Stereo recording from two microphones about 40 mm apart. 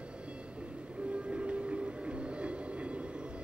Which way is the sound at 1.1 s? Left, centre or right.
Right.